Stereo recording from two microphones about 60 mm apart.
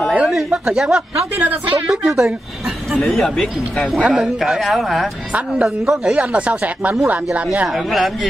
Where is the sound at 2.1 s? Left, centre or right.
Centre.